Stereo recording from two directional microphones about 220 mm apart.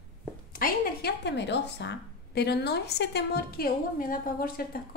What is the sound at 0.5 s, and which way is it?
A woman's voice, 40° left (ahead or behind).